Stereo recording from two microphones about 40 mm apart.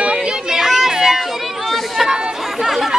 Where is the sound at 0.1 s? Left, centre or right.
Centre.